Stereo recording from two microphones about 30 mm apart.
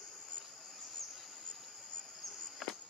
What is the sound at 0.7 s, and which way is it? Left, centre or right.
Insect, centre.